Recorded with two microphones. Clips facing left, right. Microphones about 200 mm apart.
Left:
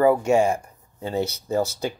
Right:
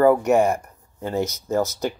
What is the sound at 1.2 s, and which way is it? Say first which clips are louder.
Speech: right 1 dB; 35° left (ahead or behind).